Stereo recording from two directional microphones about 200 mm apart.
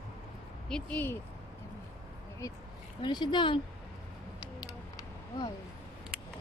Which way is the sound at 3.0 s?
20° left (ahead or behind).